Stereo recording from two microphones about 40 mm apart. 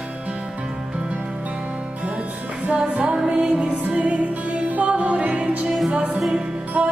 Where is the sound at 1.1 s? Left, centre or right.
Right.